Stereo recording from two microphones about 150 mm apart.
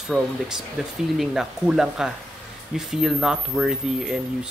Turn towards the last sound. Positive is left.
turn(degrees=-5)  # may be behind; listen again after turning